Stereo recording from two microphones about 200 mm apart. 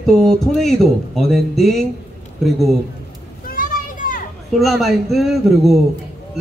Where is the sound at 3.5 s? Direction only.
45° left (ahead or behind).